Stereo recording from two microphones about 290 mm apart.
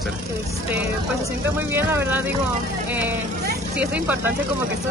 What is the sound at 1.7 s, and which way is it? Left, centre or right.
Speech, centre.